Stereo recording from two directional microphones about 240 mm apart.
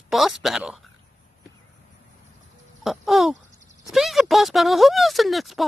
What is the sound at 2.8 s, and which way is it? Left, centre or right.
Speech, centre.